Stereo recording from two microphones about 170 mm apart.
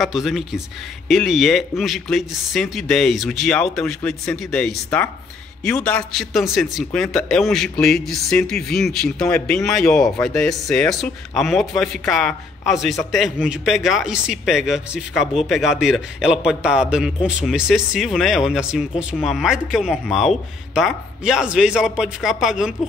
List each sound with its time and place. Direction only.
0.0 s a man's voice: centre (ahead or behind)